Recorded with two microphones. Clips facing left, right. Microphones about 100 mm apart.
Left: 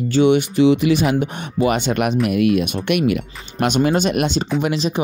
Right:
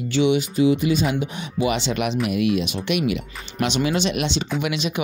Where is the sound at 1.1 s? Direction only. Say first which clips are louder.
Left 5 dB; 50° left (ahead or behind).